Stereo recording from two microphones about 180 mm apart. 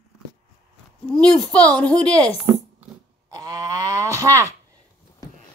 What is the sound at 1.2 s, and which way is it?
A woman's voice, 5° left (ahead or behind).